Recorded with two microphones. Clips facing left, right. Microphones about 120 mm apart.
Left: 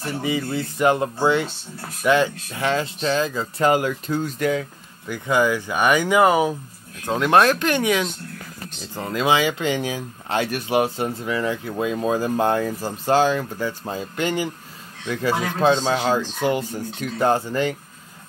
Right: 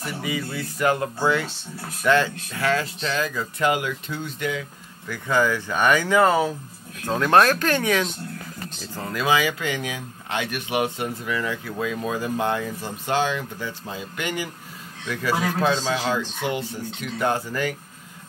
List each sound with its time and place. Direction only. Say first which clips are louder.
0.0 s speech: left 4 dB; 30° left (ahead or behind)
5.0 s speech: left 2 dB; 20° left (ahead or behind)
8.9 s speech: left 2 dB; 25° left (ahead or behind); by 14.0 s 45° left (ahead or behind)
14.1 s speech: left 5 dB; 30° left (ahead or behind)